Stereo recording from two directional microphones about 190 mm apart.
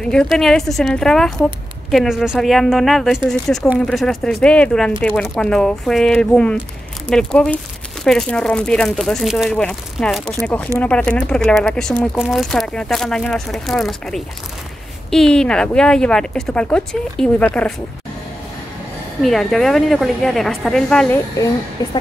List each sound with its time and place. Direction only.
0.0 s speech: 5° left (ahead or behind)
19.2 s speech: centre (ahead or behind)
21.8 s a woman's voice: 20° left (ahead or behind)